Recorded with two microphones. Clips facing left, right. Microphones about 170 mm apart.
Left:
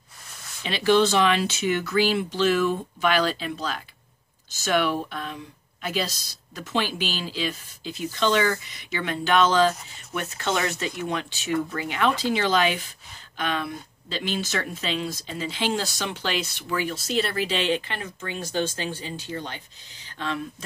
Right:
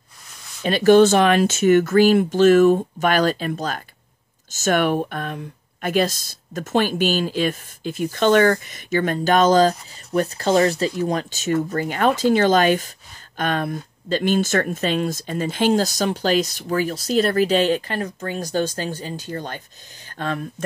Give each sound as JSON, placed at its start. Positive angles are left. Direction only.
{"t": 0.6, "sound": "speech", "side_deg": -45}